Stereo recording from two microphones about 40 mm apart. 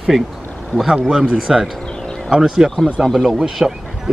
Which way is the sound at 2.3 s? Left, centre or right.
Centre.